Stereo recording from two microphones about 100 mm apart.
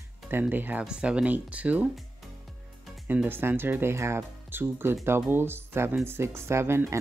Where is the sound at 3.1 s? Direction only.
20° right (ahead or behind).